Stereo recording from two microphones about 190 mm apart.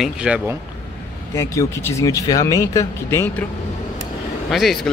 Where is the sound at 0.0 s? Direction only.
5° right (ahead or behind).